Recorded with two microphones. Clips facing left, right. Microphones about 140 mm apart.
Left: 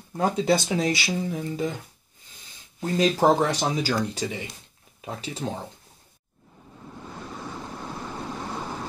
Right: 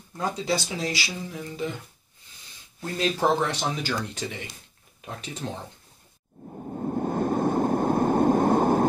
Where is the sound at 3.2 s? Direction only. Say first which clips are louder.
Left 2 dB; 40° left (ahead or behind).